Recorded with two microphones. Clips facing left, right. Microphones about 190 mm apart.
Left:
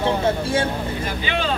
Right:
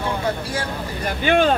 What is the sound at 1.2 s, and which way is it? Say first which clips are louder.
Speech: right 9 dB; 50° right (ahead or behind).